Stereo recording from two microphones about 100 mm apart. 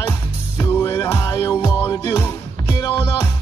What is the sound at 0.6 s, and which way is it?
Music, 25° left (ahead or behind).